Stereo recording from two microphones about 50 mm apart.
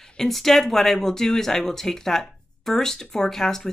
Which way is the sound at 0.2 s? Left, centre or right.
Centre.